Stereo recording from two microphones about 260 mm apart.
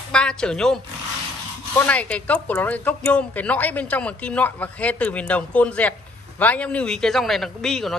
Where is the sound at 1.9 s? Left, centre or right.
Centre.